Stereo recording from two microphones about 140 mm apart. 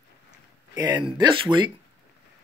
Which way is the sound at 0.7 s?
30° right (ahead or behind).